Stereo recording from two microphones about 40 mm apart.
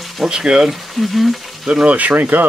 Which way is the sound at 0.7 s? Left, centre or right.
Centre.